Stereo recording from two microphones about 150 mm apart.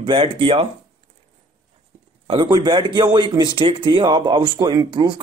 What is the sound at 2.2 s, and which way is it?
Speech, 35° right (ahead or behind).